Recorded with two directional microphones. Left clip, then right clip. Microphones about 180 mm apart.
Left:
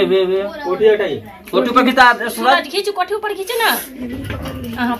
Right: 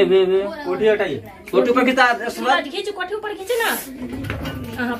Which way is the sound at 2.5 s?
40° left (ahead or behind).